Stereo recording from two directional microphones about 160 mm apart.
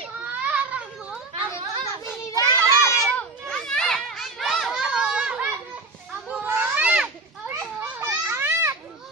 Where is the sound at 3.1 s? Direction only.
5° left (ahead or behind); by 8.7 s 15° right (ahead or behind).